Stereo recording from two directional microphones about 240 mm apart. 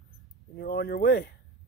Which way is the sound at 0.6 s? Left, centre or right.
Left.